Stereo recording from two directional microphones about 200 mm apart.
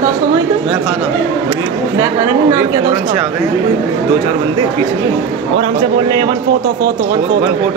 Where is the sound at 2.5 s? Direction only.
15° right (ahead or behind).